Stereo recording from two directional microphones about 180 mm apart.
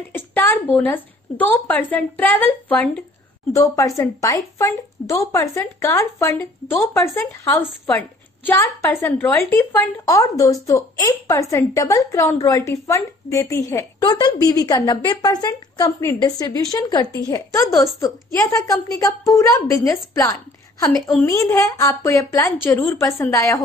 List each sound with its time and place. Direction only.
0.1 s a woman's voice: 10° left (ahead or behind)